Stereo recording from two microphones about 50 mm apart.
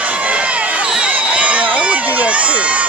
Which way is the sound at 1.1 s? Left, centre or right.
Right.